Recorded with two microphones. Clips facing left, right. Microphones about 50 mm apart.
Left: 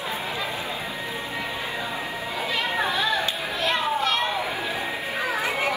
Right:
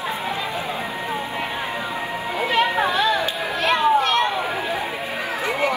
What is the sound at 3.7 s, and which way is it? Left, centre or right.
Children playing, right.